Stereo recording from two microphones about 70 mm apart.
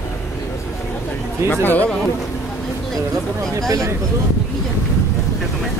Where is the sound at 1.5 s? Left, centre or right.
Left.